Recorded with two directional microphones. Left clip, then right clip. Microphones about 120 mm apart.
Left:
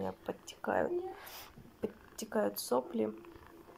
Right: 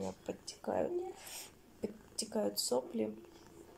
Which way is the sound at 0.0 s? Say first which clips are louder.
Left 2 dB; 10° right (ahead or behind).